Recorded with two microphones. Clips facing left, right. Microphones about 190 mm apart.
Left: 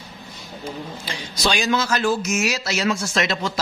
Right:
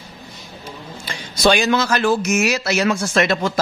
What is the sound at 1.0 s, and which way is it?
Speech, 50° right (ahead or behind).